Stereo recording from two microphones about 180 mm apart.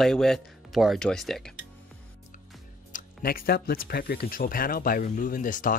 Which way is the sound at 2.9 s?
55° left (ahead or behind).